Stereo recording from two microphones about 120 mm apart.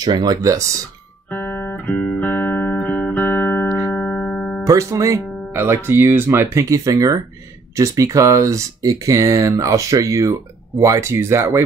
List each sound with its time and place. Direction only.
0.0 s speech: 35° right (ahead or behind)
1.3 s music: 15° left (ahead or behind)
4.6 s speech: 25° right (ahead or behind)